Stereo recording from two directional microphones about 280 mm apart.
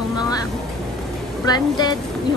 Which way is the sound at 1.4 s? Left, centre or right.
Centre.